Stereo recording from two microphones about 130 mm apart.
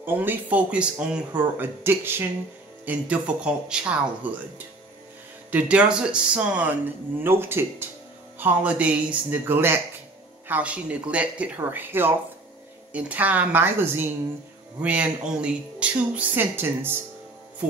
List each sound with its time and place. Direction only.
0.0 s speech: 15° right (ahead or behind)
5.5 s speech: 10° right (ahead or behind)